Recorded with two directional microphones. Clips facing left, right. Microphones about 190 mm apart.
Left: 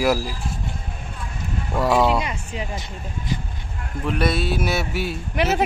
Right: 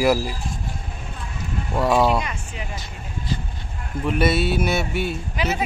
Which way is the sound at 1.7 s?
Centre (ahead or behind).